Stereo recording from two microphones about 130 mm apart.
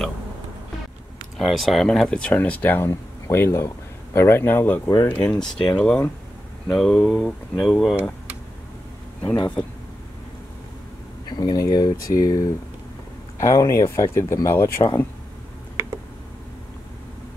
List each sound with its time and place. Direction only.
1.4 s a man's voice: centre (ahead or behind); by 5.2 s 20° left (ahead or behind)
5.2 s speech: 5° left (ahead or behind)
7.9 s speech: 10° right (ahead or behind)
11.2 s speech: 30° left (ahead or behind)